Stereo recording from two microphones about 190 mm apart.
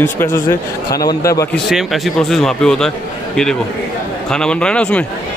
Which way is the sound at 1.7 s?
Centre (ahead or behind).